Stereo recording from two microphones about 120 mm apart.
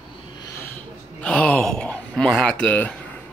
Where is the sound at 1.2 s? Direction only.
10° left (ahead or behind).